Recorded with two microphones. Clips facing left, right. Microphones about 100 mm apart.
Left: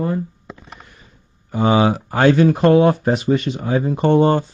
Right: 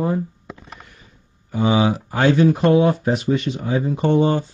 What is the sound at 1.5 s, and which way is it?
Speech, 50° left (ahead or behind).